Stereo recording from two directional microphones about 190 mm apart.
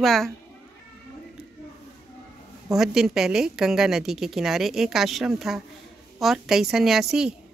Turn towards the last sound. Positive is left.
turn(degrees=-5)  # may be behind; listen again after turning